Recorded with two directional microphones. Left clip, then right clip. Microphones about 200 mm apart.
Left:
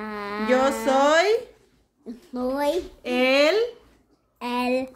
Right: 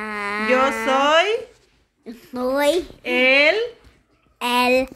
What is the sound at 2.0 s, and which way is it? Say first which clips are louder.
Speech: right 4 dB; 15° right (ahead or behind).